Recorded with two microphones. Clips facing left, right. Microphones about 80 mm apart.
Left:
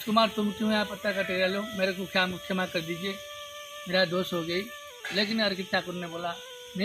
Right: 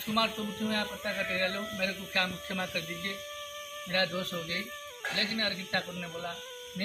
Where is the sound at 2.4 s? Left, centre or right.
Left.